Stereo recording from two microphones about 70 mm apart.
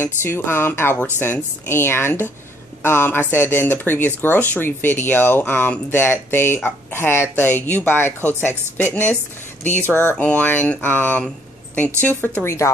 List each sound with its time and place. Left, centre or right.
0.0 s a woman's voice: left
10.1 s speech: centre
12.4 s speech: left